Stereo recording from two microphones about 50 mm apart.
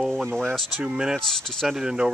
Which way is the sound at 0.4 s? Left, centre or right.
Centre.